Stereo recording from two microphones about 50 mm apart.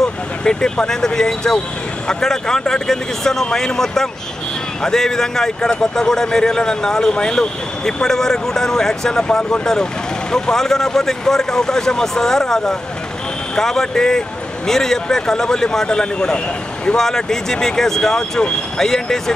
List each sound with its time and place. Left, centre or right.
0.0 s a man's voice: centre